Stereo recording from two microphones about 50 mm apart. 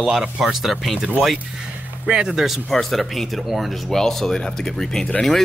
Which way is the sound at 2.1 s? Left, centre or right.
Centre.